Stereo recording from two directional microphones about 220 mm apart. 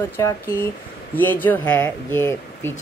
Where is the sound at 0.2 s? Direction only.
10° left (ahead or behind).